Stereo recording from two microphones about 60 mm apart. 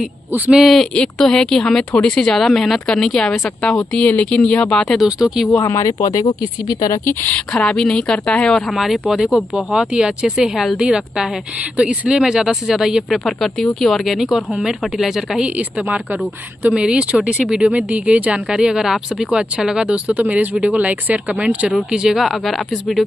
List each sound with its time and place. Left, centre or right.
0.9 s speech: centre
3.9 s speech: left
4.8 s speech: centre
5.2 s speech: centre
5.6 s speech: left
7.3 s speech: centre
8.7 s speech: centre
13.2 s speech: centre
14.3 s speech: centre
15.4 s speech: right
21.7 s speech: centre